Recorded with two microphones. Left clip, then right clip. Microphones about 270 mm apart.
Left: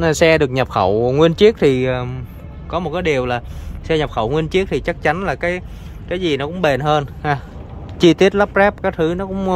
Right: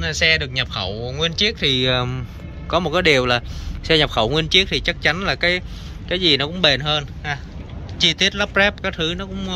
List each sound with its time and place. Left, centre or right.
0.0 s speech: left
0.8 s speech: left
1.4 s speech: left